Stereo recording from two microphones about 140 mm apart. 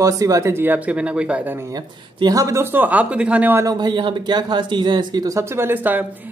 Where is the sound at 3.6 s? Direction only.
30° right (ahead or behind).